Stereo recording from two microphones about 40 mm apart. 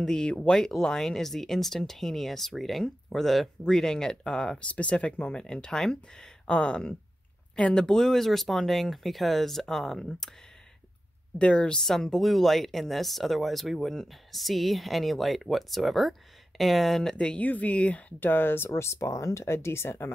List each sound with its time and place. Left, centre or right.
0.0 s speech: left
0.6 s speech: centre
3.6 s speech: centre
4.6 s speech: left; by 6.3 s centre
6.4 s speech: left; by 10.0 s centre
11.3 s speech: left
11.8 s speech: centre
17.4 s speech: left
18.2 s speech: left
19.5 s speech: left